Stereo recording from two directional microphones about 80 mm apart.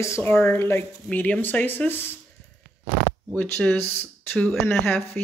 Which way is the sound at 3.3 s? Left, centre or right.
Centre.